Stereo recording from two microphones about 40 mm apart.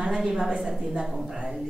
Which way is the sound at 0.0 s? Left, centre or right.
Centre.